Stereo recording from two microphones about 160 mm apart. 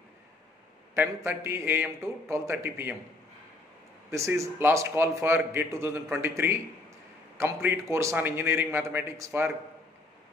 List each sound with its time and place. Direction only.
0.9 s a man's voice: 15° right (ahead or behind)
4.1 s a man's voice: 20° right (ahead or behind)